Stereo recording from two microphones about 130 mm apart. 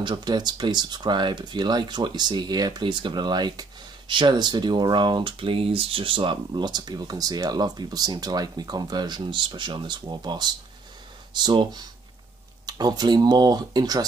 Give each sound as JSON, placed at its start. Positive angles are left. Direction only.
{"t": 0.0, "sound": "speech", "side_deg": -35}